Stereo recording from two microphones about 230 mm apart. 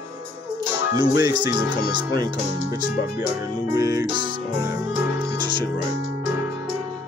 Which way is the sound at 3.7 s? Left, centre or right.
Centre.